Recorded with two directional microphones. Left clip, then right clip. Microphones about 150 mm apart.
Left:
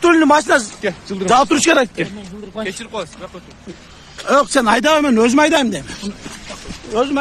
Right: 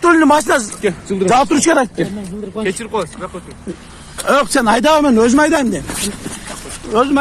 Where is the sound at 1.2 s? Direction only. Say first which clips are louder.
Right 1 dB; 45° left (ahead or behind).